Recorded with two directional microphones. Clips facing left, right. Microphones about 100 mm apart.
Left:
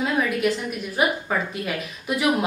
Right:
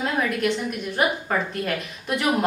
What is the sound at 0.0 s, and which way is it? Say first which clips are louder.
A woman's voice: left 1 dB; centre (ahead or behind).